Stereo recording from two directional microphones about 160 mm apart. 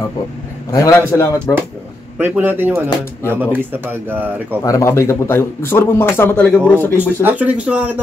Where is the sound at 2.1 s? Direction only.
10° right (ahead or behind).